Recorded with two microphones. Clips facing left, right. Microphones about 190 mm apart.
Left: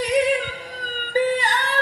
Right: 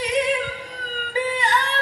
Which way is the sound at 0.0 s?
35° left (ahead or behind).